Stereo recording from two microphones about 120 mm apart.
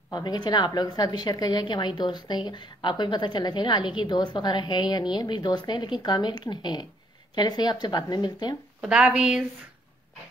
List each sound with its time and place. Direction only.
0.1 s a woman's voice: 35° left (ahead or behind)
8.8 s a woman's voice: 10° right (ahead or behind)